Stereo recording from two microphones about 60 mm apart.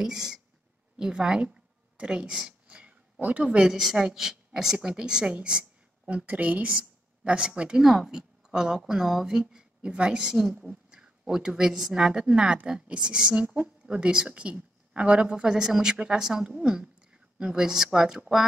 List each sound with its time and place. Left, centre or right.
0.0 s a woman's voice: centre
2.8 s a sound: right
3.4 s a woman's voice: centre